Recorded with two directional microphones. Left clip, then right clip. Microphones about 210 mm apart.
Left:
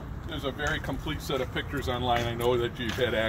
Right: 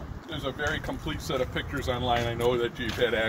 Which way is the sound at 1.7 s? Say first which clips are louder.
Left 1 dB; 40° right (ahead or behind).